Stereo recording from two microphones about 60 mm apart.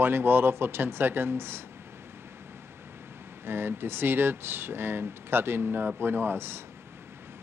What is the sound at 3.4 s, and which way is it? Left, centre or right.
Speech, right.